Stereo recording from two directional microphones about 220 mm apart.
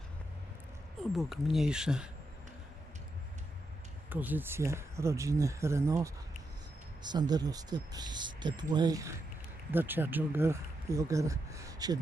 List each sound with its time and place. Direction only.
1.1 s speech: centre (ahead or behind)
4.1 s speech: 10° right (ahead or behind)